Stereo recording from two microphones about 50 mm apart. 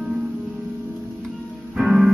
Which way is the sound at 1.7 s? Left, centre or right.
Centre.